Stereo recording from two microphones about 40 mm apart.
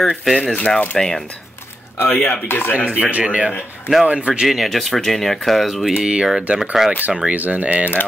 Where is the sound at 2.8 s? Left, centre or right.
Right.